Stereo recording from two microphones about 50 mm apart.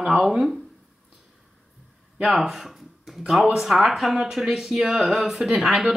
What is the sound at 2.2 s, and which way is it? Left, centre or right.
A woman's voice, centre.